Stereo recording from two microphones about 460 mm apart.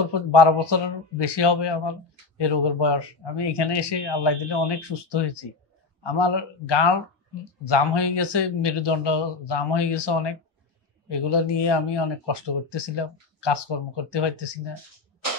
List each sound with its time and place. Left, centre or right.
0.3 s speech: left